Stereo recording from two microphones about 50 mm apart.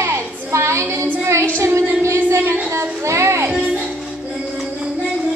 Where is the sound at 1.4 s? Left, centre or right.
Right.